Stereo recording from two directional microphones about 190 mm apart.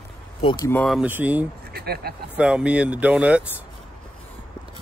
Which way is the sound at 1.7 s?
55° right (ahead or behind).